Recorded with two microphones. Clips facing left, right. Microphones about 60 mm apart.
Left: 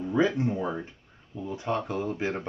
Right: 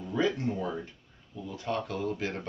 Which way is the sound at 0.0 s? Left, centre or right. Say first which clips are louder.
Left 4 dB; left.